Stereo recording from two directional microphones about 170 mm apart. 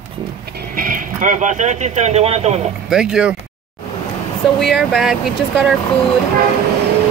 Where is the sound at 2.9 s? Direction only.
5° right (ahead or behind).